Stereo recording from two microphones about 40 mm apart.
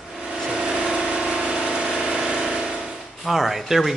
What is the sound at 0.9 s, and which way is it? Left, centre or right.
Engine, centre.